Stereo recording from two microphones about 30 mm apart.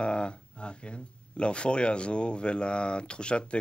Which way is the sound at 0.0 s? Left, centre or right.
Left.